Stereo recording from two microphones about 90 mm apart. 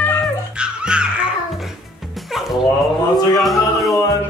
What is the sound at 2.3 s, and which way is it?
Music, 5° right (ahead or behind).